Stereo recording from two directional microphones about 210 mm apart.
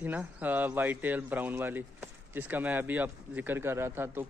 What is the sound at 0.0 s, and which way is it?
Speech, 10° right (ahead or behind).